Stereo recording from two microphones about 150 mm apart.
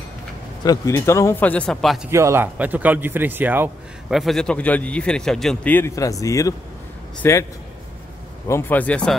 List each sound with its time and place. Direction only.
0.7 s speech: 20° left (ahead or behind); by 2.0 s centre (ahead or behind)
2.0 s speech: 20° right (ahead or behind)
4.1 s speech: centre (ahead or behind); by 7.4 s 15° left (ahead or behind)
8.5 s speech: 15° left (ahead or behind)